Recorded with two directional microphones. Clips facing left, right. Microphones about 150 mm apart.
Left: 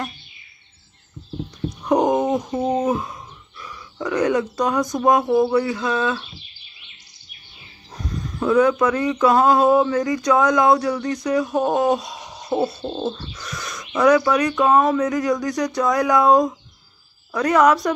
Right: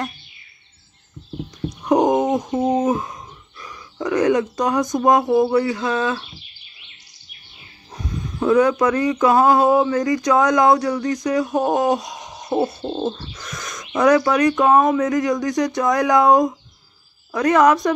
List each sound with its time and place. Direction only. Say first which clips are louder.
1.9 s speech: right 2 dB; 20° right (ahead or behind)
3.7 s burping: right 2 dB; 25° right (ahead or behind)
4.9 s speech: right 1 dB; 20° right (ahead or behind)
7.9 s wild animals: even; 25° right (ahead or behind)
9.1 s speech: even; 20° right (ahead or behind)
9.9 s a sound: right 1 dB; 25° left (ahead or behind)
10.3 s speech: right 1 dB; 25° right (ahead or behind)
13.1 s bird: left 1 dB; 40° right (ahead or behind)
13.9 s speech: right 1 dB; 25° right (ahead or behind)
15.0 s speech: right 1 dB; 30° right (ahead or behind)